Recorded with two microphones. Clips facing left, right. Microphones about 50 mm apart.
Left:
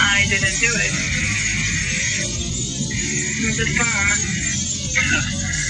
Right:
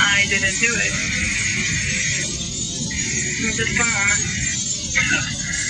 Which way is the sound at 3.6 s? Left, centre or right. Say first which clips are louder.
Right 1 dB; centre.